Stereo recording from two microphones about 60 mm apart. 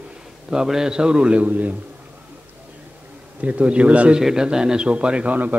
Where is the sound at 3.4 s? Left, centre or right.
Right.